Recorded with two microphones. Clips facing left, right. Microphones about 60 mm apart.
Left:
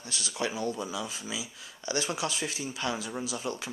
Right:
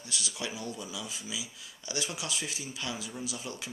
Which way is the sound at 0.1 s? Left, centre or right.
Left.